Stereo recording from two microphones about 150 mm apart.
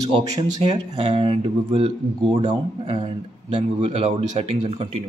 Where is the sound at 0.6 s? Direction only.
35° right (ahead or behind).